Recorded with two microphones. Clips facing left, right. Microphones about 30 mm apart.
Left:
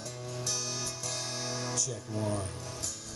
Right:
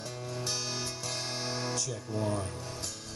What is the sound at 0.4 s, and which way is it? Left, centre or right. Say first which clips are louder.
Music: right 1 dB; right.